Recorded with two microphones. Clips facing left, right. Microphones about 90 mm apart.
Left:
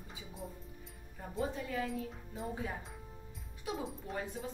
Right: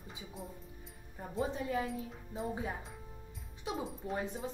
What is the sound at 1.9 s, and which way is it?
Speech, centre (ahead or behind).